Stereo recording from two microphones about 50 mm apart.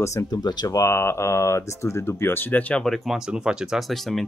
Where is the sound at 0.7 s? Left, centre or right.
Left.